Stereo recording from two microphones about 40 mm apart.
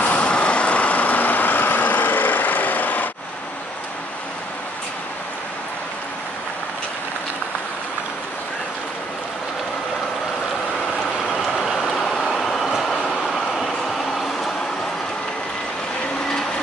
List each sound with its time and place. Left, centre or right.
0.2 s vehicle: left
11.2 s rain: centre
12.1 s vehicle: centre
12.5 s train: centre
12.8 s vehicle: centre